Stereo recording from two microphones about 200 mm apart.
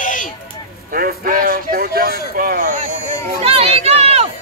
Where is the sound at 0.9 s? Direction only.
45° right (ahead or behind).